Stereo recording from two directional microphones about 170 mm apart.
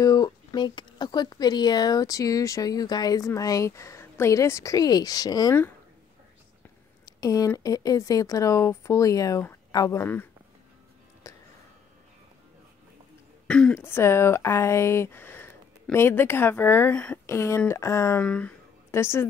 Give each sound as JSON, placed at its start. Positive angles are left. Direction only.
{"t": 0.0, "sound": "speech", "side_deg": 20}
{"t": 7.1, "sound": "speech", "side_deg": 20}
{"t": 11.3, "sound": "a sound", "side_deg": 20}
{"t": 13.5, "sound": "speech", "side_deg": 5}